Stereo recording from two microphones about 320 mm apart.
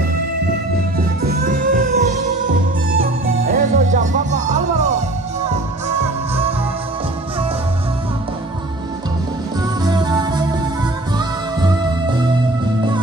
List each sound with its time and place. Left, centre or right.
0.9 s music: right
3.3 s music: right
3.5 s music: right
9.6 s music: centre